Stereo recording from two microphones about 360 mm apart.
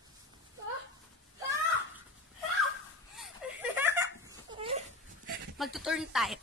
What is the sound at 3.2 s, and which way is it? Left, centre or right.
Laughter, centre.